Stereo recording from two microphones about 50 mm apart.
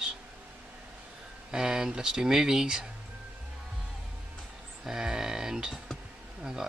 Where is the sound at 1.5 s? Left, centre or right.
Centre.